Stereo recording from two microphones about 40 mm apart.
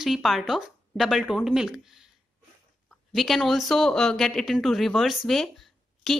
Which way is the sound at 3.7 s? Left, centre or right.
Centre.